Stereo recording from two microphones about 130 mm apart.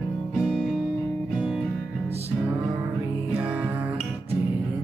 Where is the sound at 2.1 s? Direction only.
50° right (ahead or behind).